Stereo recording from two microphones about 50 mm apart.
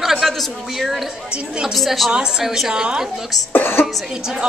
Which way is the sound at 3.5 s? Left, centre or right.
Left.